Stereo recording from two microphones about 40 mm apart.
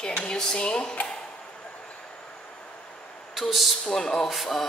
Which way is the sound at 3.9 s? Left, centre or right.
Centre.